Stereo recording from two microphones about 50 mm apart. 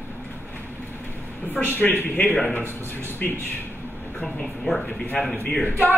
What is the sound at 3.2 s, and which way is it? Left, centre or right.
Speech, left.